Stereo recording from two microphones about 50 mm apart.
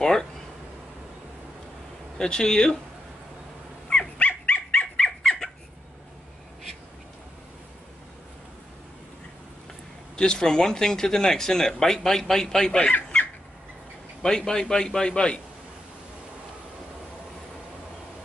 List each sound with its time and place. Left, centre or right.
0.0 s speech: centre
2.1 s speech: centre
3.9 s dog: left
5.2 s a sound: centre
10.1 s speech: centre
14.2 s speech: centre